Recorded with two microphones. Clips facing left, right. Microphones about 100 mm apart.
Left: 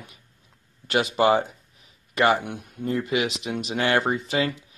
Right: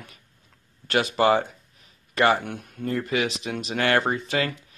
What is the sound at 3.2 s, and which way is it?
Speech, 30° right (ahead or behind).